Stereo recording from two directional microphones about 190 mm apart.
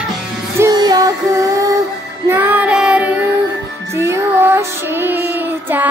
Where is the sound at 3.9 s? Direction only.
15° right (ahead or behind).